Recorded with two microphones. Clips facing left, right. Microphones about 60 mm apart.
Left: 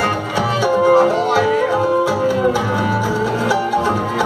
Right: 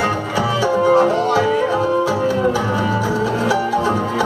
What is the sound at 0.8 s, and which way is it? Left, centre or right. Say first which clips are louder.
Music: left 1 dB; left.